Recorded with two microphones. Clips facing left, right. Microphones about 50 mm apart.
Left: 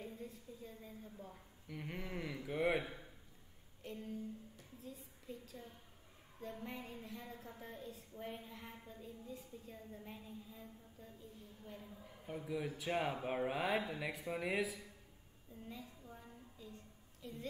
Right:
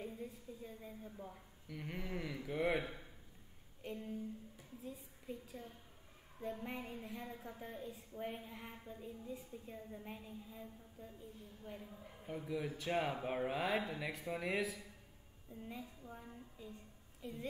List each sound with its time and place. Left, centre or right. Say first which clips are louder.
0.0 s a woman's voice: right 2 dB; centre
1.7 s speech: right 1 dB; centre
2.8 s speech: right 1 dB; centre
3.8 s a woman's voice: right 1 dB; centre
12.3 s speech: even; centre
15.7 s a woman's voice: right 2 dB; centre